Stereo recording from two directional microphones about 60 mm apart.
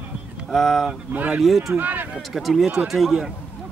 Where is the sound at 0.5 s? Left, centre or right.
Centre.